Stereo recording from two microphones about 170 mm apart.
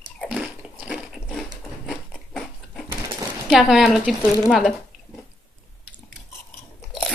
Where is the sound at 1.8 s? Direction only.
5° left (ahead or behind).